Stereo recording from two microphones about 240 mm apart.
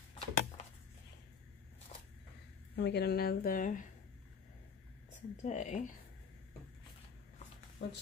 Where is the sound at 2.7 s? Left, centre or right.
Left.